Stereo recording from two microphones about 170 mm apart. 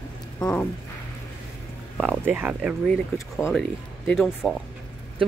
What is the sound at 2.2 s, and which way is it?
Speech, 10° right (ahead or behind).